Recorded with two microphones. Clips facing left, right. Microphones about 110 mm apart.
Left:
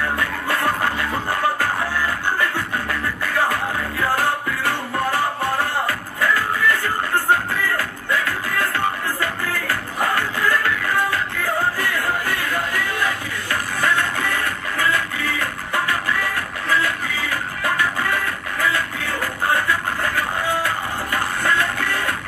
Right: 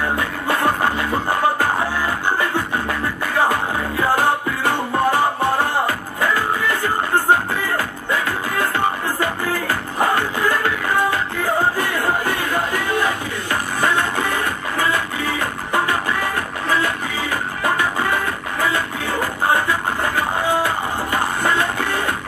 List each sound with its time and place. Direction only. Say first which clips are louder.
0.2 s music: right 2 dB; 20° right (ahead or behind)